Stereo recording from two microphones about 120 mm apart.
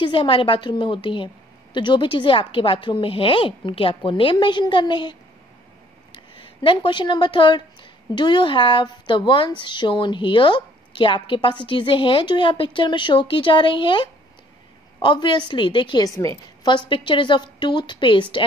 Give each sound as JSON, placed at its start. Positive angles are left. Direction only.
{"t": 0.0, "sound": "a woman's voice", "side_deg": 45}
{"t": 6.1, "sound": "a woman's voice", "side_deg": 45}